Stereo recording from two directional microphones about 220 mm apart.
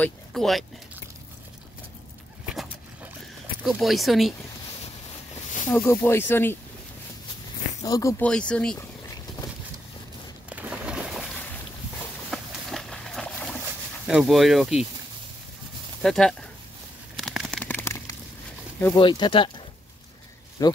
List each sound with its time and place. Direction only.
0.0 s speech: centre (ahead or behind)
2.5 s a sound: centre (ahead or behind)
3.6 s speech: centre (ahead or behind)
5.7 s speech: 10° left (ahead or behind)
7.8 s speech: 15° left (ahead or behind)
10.5 s a sound: 5° right (ahead or behind)
12.3 s boat: centre (ahead or behind)
14.0 s speech: centre (ahead or behind)
16.0 s speech: centre (ahead or behind)
17.2 s a sound: centre (ahead or behind)
18.9 s speech: 20° left (ahead or behind)
20.6 s speech: 15° left (ahead or behind)